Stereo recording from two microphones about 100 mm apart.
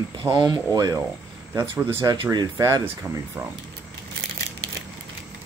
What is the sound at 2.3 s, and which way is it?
Speech, 40° right (ahead or behind).